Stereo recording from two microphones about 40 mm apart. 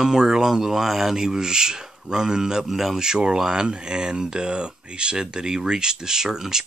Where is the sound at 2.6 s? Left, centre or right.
Centre.